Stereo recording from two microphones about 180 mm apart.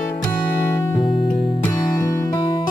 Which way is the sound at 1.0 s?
25° left (ahead or behind).